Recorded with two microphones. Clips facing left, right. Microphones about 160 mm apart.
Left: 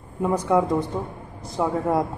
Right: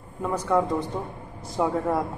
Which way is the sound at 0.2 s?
15° left (ahead or behind).